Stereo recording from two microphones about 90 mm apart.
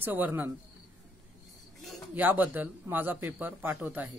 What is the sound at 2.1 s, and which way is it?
Speech, 20° right (ahead or behind).